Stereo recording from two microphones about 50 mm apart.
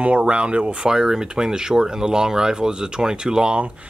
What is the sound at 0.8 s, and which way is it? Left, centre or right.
Speech, centre.